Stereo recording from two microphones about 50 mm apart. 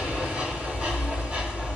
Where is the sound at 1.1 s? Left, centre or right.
Centre.